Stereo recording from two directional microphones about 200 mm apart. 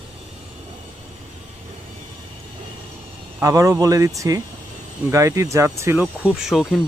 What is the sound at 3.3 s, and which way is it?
Speech, 15° right (ahead or behind).